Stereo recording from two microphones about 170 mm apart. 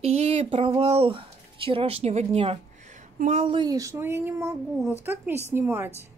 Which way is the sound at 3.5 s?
25° right (ahead or behind).